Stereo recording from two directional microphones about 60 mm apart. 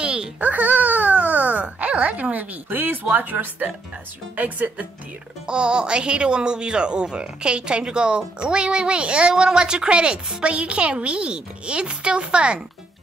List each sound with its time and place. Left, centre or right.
0.0 s a sound: centre
0.4 s speech: right
5.5 s speech: centre